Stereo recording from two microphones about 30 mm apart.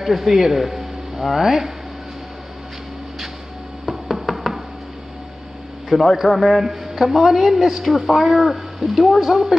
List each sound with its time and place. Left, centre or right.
0.0 s a woman's voice: centre
3.8 s knock: centre
5.9 s speech: centre
6.6 s a woman's voice: centre